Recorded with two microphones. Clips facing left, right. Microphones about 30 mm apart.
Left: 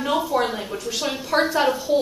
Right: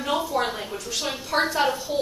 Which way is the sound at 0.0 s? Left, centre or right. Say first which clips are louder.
Left 3 dB; centre.